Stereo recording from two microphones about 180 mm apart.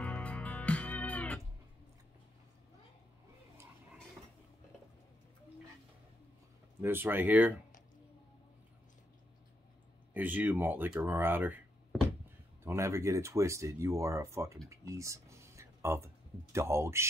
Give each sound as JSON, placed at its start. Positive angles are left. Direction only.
{"t": 0.0, "sound": "music", "side_deg": 5}
{"t": 6.8, "sound": "speech", "side_deg": -10}
{"t": 10.1, "sound": "speech", "side_deg": -10}
{"t": 12.6, "sound": "speech", "side_deg": -15}
{"t": 14.7, "sound": "a sound", "side_deg": -15}
{"t": 16.5, "sound": "speech", "side_deg": -15}